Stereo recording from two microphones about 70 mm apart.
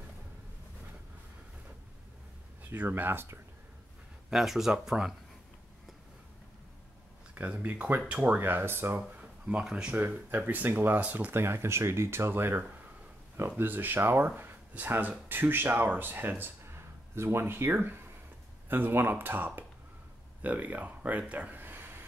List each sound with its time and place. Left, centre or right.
2.7 s speech: right
4.3 s speech: centre
7.3 s speech: right
9.1 s a sound: centre
9.7 s speech: centre
9.9 s speech: right
11.3 s speech: right
14.3 s a sound: right
14.9 s speech: right